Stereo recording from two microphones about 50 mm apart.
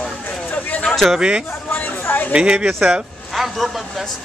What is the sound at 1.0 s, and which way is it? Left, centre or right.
Speech, centre.